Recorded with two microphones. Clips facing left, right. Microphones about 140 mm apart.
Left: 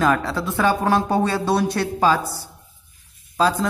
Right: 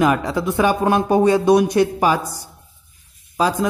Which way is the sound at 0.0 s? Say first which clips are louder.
Right 3 dB; 15° right (ahead or behind).